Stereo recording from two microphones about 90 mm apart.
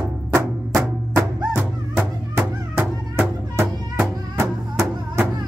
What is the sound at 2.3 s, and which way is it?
Music, 25° right (ahead or behind).